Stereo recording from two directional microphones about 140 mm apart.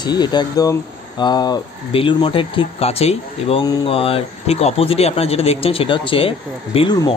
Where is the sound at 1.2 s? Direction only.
30° left (ahead or behind).